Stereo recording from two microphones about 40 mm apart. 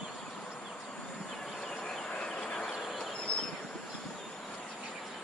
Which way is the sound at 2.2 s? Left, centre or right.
Centre.